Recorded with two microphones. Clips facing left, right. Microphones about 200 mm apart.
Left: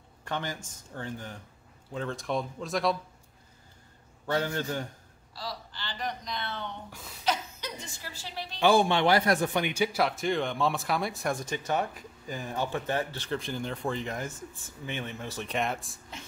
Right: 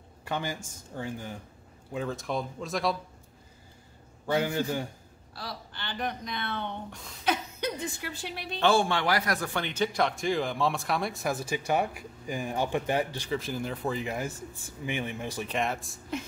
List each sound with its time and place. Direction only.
0.2 s a man's voice: 10° right (ahead or behind)
4.3 s speech: 10° right (ahead or behind)
5.3 s a woman's voice: 55° right (ahead or behind)
8.5 s a man's voice: 15° left (ahead or behind); by 13.3 s 15° right (ahead or behind)
13.3 s a man's voice: 5° right (ahead or behind)
15.4 s a man's voice: centre (ahead or behind)